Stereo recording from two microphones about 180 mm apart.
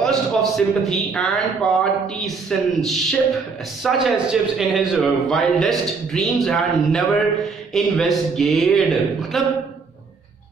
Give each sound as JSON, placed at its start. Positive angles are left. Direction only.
{"t": 0.0, "sound": "a man's voice", "side_deg": 0}